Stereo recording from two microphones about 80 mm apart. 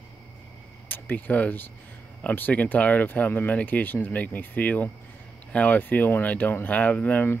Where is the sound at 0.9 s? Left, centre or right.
Left.